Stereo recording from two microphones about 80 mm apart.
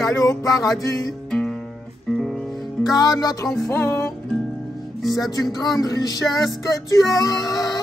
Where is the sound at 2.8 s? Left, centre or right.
Left.